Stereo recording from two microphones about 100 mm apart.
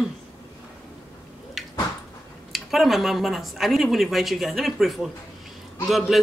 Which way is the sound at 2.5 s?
Centre (ahead or behind).